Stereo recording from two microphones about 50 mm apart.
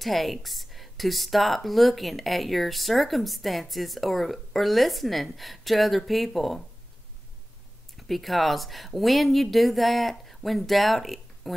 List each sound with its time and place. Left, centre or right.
0.0 s a woman's voice: centre
8.1 s a woman's voice: centre